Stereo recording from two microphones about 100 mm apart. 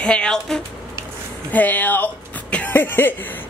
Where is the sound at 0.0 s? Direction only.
10° left (ahead or behind).